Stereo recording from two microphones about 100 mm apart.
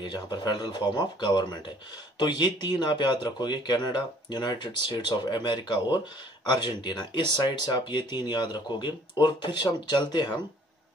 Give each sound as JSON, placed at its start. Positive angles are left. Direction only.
{"t": 0.0, "sound": "speech", "side_deg": 50}